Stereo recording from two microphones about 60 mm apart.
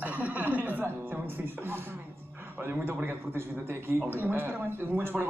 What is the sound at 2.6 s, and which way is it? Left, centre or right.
Speech, right.